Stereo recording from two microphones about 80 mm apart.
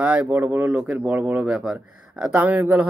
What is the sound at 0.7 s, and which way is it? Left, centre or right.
Speech, centre.